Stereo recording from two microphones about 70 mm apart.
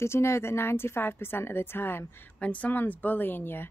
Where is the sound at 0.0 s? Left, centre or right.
Left.